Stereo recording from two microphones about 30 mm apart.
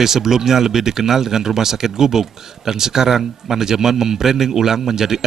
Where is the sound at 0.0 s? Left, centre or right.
Centre.